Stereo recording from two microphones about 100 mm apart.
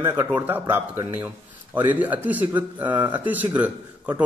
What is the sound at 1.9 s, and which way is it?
A man's voice, 15° right (ahead or behind).